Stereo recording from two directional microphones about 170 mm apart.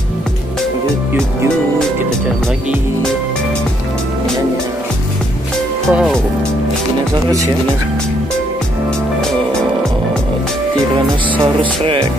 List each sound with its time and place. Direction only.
5.9 s speech: centre (ahead or behind)
11.8 s speech: 30° right (ahead or behind)